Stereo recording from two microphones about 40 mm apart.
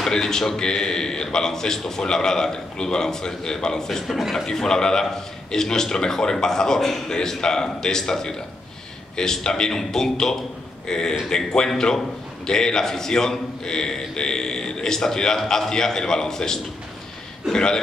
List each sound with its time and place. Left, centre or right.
0.0 s a man's voice: centre
4.5 s a man's voice: centre